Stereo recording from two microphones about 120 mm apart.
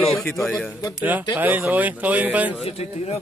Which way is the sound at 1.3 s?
15° right (ahead or behind).